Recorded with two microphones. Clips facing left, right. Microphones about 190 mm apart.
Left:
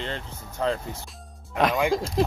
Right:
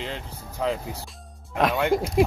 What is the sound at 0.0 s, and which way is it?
Speech, 5° right (ahead or behind).